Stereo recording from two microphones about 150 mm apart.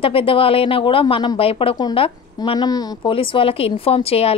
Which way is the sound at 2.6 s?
25° left (ahead or behind).